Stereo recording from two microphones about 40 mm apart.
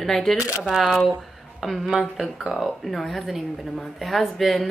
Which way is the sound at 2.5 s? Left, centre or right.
Centre.